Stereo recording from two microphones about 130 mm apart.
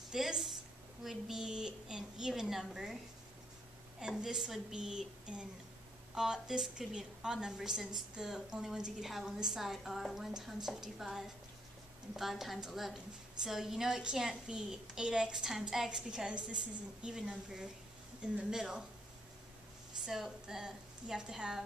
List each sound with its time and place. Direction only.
0.1 s a woman's voice: 5° right (ahead or behind)
4.0 s a woman's voice: 5° right (ahead or behind)
20.1 s a woman's voice: 5° right (ahead or behind)